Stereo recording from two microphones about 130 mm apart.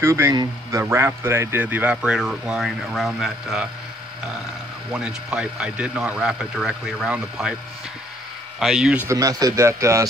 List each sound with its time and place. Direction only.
0.0 s a man's voice: 20° right (ahead or behind); by 3.6 s 5° right (ahead or behind)
4.9 s a man's voice: 5° right (ahead or behind)
8.5 s a man's voice: 5° right (ahead or behind)
9.0 s a man's voice: 25° right (ahead or behind)